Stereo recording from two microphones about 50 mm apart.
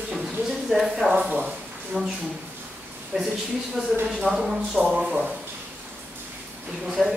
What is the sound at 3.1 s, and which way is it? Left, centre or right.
Speech, centre.